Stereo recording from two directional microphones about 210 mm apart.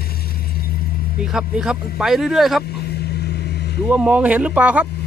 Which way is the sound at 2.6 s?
50° left (ahead or behind).